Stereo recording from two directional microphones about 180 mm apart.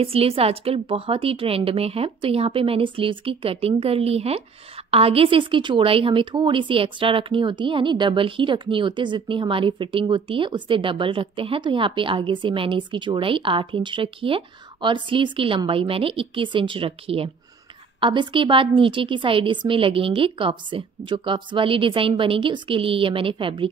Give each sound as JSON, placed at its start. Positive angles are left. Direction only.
{"t": 0.0, "sound": "a woman's voice", "side_deg": -30}